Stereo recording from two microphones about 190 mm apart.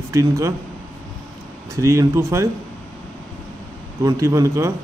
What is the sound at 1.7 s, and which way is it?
Speech, 15° right (ahead or behind).